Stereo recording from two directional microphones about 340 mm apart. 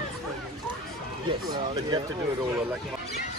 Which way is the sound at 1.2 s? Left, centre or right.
Centre.